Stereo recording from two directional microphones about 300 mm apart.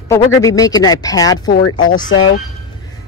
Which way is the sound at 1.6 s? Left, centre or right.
Left.